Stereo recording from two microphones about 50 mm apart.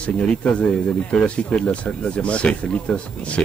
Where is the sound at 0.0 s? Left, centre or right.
Left.